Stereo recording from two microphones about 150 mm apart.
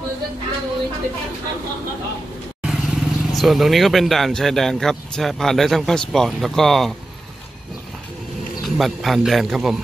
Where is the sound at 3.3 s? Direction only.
Centre (ahead or behind).